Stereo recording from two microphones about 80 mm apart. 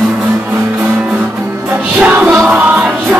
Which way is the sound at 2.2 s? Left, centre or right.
Centre.